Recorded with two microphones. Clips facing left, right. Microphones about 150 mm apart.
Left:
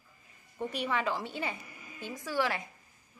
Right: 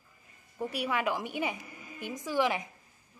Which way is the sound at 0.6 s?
10° right (ahead or behind).